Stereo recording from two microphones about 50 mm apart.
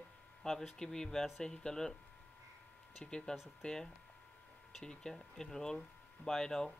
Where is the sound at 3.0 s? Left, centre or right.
Centre.